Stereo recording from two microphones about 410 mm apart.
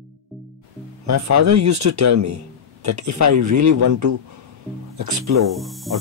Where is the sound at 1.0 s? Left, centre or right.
Right.